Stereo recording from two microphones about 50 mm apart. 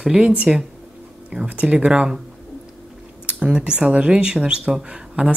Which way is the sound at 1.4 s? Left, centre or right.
Right.